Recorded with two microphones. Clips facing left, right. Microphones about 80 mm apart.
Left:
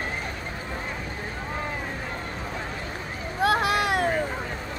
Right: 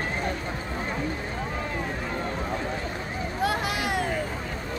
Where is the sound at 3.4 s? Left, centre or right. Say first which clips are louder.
Left 5 dB; left.